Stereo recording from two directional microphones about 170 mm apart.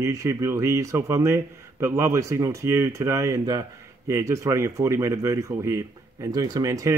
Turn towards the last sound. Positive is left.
turn(degrees=-20)  # may be behind; listen again after turning